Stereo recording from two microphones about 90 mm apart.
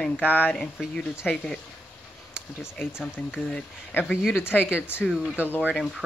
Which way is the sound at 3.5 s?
15° left (ahead or behind).